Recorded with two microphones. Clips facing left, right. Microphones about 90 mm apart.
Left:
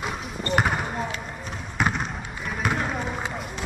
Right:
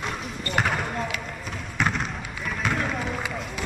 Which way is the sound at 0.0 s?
5° left (ahead or behind).